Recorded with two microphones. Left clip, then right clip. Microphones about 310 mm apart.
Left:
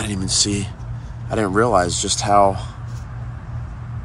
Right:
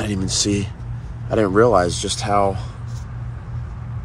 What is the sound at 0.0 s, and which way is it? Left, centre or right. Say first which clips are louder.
Speech: left 1 dB; centre.